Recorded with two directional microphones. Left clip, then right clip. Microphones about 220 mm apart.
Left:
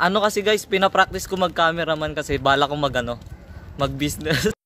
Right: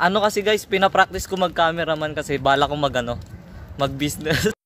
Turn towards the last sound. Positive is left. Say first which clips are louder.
# even
turn(degrees=0)  # may be behind; listen again after turning